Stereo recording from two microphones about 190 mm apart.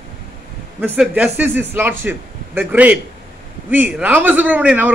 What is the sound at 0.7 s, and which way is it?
A man's voice, 5° right (ahead or behind).